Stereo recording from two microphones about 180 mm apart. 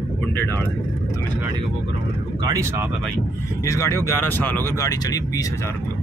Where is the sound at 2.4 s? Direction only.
15° right (ahead or behind).